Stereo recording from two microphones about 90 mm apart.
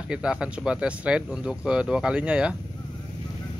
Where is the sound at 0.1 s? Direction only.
10° right (ahead or behind).